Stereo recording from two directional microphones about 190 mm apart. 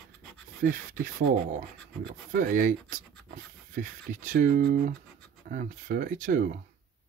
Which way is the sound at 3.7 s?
45° right (ahead or behind).